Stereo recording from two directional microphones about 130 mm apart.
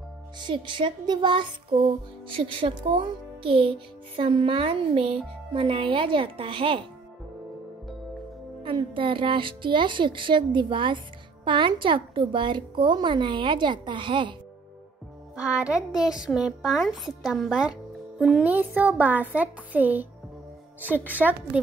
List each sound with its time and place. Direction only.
0.4 s a woman's voice: 35° right (ahead or behind)
8.6 s a woman's voice: 40° right (ahead or behind)
15.3 s a child's voice: 5° right (ahead or behind)